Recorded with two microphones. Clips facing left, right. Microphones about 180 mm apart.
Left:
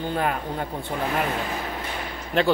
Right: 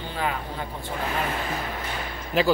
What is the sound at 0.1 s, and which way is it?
Speech, 50° left (ahead or behind).